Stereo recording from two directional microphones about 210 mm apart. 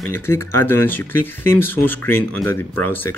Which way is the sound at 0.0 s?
10° left (ahead or behind).